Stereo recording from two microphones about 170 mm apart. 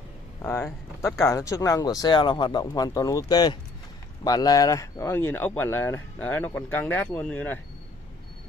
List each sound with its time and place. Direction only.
0.4 s speech: 15° left (ahead or behind)